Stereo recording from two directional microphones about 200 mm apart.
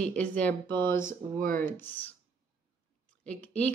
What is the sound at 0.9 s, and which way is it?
Speech, 40° right (ahead or behind).